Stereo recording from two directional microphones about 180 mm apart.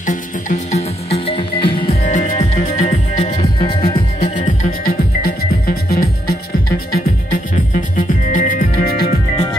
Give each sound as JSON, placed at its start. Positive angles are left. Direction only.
{"t": 0.0, "sound": "music", "side_deg": 45}
{"t": 2.0, "sound": "music", "side_deg": 40}
{"t": 3.5, "sound": "music", "side_deg": 30}
{"t": 4.4, "sound": "music", "side_deg": 50}
{"t": 7.5, "sound": "music", "side_deg": 45}